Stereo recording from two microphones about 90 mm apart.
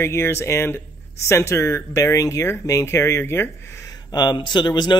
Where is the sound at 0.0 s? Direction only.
30° left (ahead or behind).